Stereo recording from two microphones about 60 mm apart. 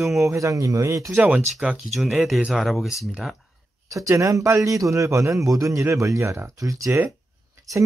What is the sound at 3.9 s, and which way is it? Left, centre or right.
A man's voice, right.